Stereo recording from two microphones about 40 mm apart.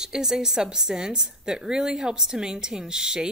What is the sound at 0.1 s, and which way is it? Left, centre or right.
A woman's voice, centre.